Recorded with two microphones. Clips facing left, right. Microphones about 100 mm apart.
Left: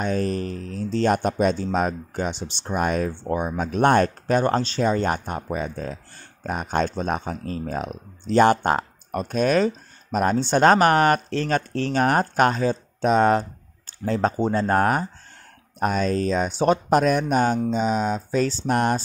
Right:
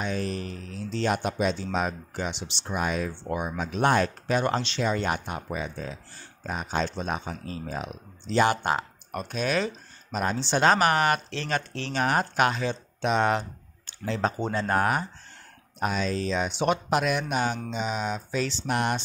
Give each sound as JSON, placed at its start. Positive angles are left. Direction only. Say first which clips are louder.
{"t": 0.0, "sound": "speech", "louder": "left 6 dB", "side_deg": 45}